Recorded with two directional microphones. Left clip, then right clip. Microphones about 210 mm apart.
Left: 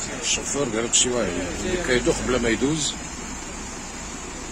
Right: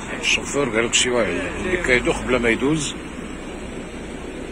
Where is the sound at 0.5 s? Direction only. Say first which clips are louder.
Right 4 dB; 25° left (ahead or behind).